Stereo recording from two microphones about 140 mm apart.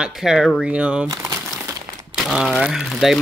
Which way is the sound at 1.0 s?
25° right (ahead or behind).